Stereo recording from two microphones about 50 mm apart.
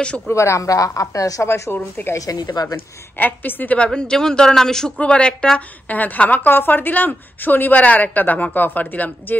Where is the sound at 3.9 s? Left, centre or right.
Centre; by 6.5 s left.